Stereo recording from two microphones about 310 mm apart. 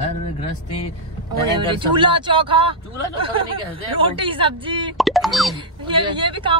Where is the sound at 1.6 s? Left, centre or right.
Centre.